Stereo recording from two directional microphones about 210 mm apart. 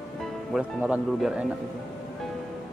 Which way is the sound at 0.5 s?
5° right (ahead or behind).